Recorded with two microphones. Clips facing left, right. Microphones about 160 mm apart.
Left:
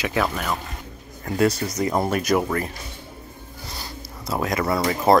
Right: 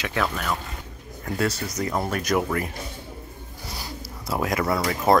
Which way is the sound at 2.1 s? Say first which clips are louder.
Left 1 dB; 10° left (ahead or behind).